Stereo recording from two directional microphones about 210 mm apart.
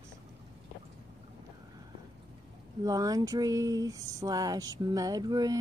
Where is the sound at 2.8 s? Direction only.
15° right (ahead or behind).